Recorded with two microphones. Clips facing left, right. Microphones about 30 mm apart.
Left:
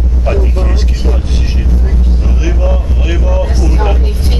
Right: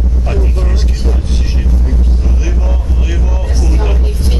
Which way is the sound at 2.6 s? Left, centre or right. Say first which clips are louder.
Left 5 dB; left.